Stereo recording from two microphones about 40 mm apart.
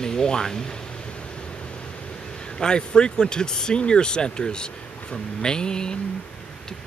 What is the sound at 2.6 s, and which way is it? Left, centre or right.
Speech, left.